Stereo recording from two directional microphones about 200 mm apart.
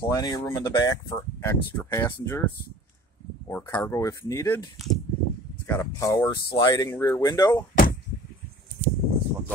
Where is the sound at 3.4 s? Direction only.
15° left (ahead or behind).